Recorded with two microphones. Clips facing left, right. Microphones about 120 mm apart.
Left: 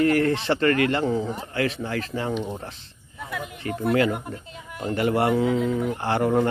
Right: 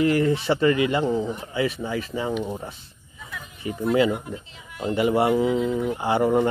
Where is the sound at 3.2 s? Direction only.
65° left (ahead or behind).